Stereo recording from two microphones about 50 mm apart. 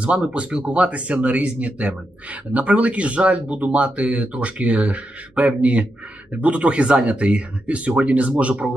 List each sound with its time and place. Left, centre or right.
0.3 s speech: right